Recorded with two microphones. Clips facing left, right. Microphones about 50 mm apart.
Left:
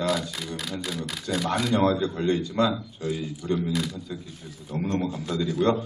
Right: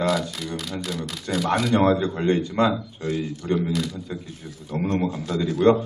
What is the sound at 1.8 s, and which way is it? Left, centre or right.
Speech, right.